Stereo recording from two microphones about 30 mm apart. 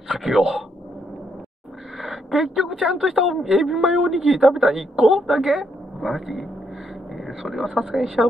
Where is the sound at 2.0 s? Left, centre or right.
Centre.